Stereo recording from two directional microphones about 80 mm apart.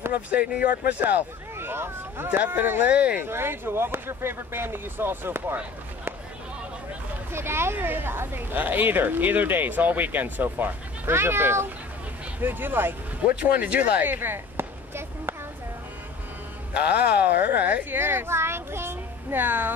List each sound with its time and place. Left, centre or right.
0.3 s a woman's voice: centre
3.3 s a woman's voice: right
7.3 s a woman's voice: right
16.7 s a woman's voice: centre